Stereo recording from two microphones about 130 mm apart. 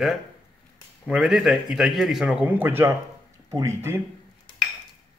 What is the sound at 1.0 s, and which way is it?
A man's voice, 5° right (ahead or behind).